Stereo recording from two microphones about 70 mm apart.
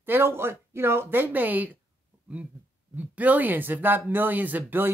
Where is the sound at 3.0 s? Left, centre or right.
Right.